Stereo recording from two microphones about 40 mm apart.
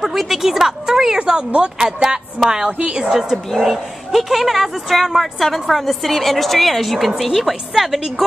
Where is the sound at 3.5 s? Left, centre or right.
Centre.